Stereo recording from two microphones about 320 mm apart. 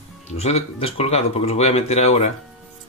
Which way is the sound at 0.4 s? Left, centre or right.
Centre.